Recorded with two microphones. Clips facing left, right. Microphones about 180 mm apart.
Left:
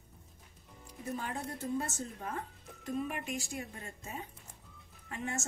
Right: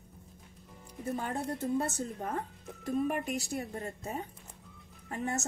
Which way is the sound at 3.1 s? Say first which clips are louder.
Right 6 dB; 40° right (ahead or behind).